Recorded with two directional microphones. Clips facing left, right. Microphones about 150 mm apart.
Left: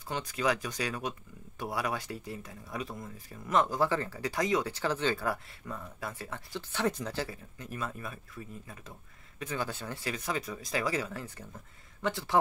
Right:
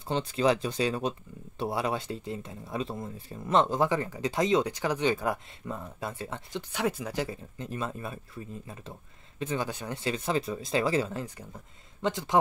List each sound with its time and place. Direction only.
0.1 s speech: 30° right (ahead or behind)